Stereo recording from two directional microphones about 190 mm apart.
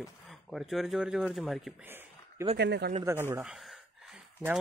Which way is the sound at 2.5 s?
60° right (ahead or behind).